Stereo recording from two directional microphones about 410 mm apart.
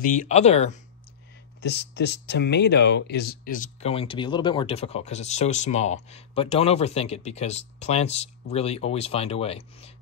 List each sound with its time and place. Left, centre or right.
0.0 s speech: centre